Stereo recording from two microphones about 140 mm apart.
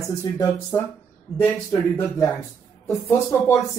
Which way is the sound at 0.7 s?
25° left (ahead or behind).